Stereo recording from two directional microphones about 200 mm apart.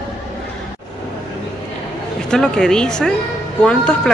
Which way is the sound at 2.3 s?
5° left (ahead or behind).